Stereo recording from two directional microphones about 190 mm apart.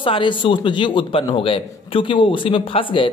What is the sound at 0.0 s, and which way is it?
A man's voice, 25° left (ahead or behind).